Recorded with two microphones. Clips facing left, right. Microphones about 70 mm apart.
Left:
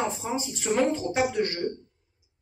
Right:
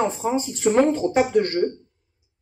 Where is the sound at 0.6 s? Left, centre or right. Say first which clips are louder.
Right 7 dB; right.